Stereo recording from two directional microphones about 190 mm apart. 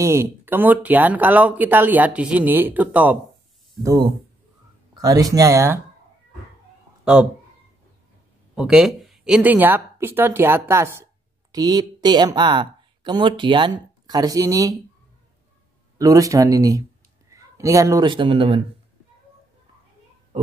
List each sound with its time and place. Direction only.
0.0 s speech: 15° right (ahead or behind)
3.8 s speech: 20° right (ahead or behind)
8.5 s speech: 5° right (ahead or behind)
16.0 s speech: 15° right (ahead or behind)